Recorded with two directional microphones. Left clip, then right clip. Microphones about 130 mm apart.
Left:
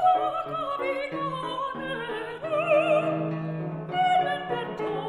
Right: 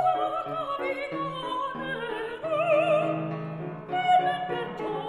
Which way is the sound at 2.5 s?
50° left (ahead or behind).